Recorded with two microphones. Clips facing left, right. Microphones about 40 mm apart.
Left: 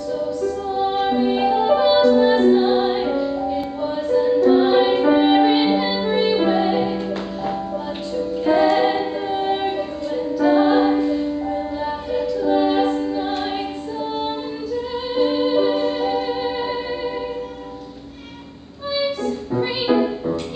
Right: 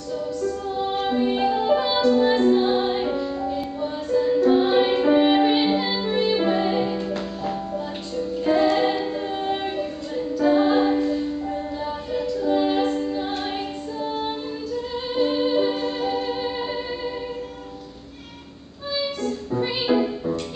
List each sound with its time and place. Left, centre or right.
0.1 s music: centre
18.9 s music: centre